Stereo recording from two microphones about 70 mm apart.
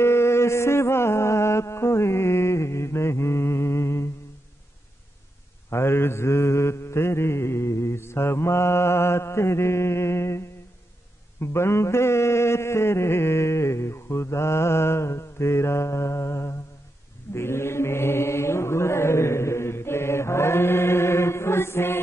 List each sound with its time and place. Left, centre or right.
0.0 s music: left
5.7 s mantra: left
17.3 s chant: left